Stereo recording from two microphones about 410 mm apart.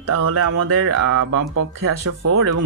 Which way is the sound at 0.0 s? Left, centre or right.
Right.